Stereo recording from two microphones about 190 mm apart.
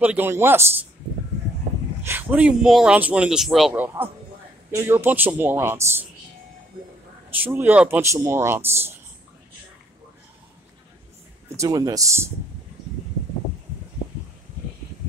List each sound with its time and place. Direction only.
0.0 s speech: 10° right (ahead or behind)
2.0 s speech: 10° right (ahead or behind)
7.2 s speech: 10° right (ahead or behind)
11.5 s speech: 15° right (ahead or behind)